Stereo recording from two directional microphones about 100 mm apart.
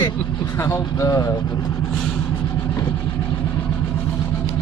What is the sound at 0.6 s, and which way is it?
Speech, 30° left (ahead or behind).